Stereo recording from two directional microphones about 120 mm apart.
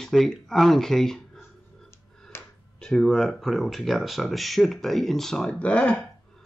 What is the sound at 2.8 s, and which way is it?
Speech, 5° left (ahead or behind).